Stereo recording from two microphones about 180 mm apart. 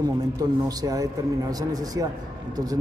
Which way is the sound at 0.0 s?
20° right (ahead or behind).